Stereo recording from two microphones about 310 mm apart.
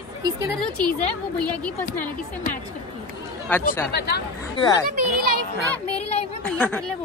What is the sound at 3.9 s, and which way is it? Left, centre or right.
Speech, left.